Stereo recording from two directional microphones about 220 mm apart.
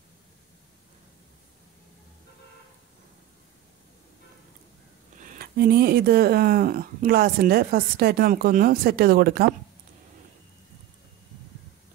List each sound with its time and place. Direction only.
5.2 s speech: 40° right (ahead or behind)